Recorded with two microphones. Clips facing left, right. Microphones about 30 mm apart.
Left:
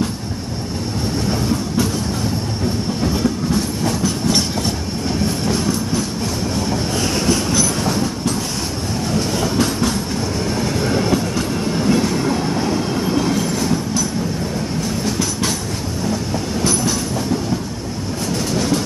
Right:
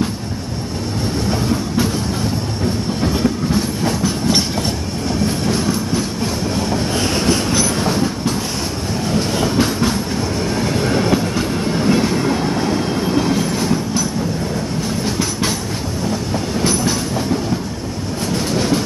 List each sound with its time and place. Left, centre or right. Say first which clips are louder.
7.0 s train: right 1 dB; right
9.4 s train: right 2 dB; right